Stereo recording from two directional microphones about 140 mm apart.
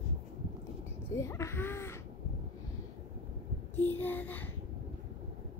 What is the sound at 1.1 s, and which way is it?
Speech, 20° left (ahead or behind).